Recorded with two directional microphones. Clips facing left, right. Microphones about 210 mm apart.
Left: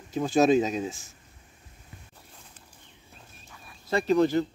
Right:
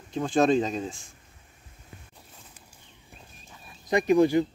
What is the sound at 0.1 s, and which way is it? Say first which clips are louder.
Speech: left 1 dB; 5° left (ahead or behind).